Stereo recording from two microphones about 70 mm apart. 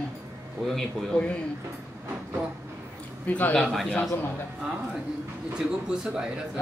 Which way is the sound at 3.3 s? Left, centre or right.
Left.